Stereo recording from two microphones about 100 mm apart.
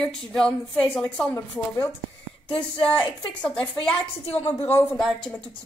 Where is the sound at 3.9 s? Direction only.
90° left.